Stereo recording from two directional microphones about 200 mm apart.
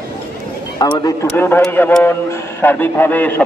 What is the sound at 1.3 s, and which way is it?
A man's voice, 5° left (ahead or behind).